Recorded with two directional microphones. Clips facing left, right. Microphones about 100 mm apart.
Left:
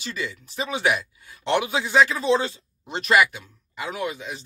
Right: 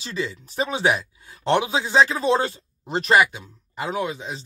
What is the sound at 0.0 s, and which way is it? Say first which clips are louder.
Speech: right 3 dB; 30° right (ahead or behind).